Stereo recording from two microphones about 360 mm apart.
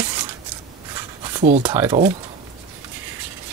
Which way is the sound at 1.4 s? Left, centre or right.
Centre.